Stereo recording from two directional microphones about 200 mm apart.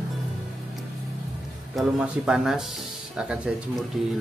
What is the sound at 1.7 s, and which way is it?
Speech, 5° right (ahead or behind).